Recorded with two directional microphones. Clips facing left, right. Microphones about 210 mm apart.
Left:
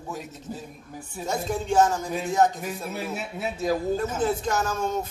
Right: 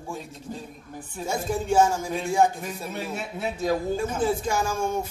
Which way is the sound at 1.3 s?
10° right (ahead or behind).